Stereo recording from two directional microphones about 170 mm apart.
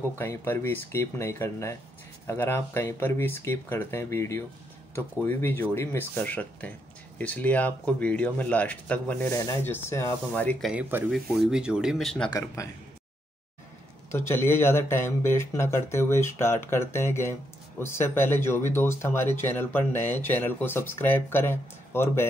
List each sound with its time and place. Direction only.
0.2 s speech: 15° left (ahead or behind)
10.7 s speech: 10° right (ahead or behind)
12.3 s a man's voice: 20° left (ahead or behind)
14.1 s speech: 15° left (ahead or behind)